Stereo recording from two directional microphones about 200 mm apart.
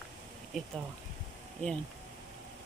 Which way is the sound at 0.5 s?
Centre (ahead or behind).